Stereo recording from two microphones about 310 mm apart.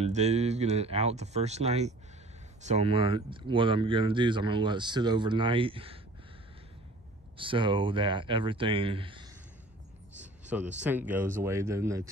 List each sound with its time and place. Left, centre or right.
0.0 s speech: right
7.3 s speech: centre
10.8 s speech: centre